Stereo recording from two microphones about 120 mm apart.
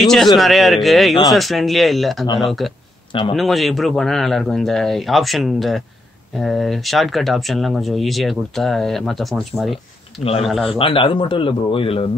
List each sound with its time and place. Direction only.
0.0 s speech: 5° left (ahead or behind)
3.1 s a man's voice: 45° left (ahead or behind)
3.3 s speech: centre (ahead or behind)
10.7 s speech: 50° left (ahead or behind)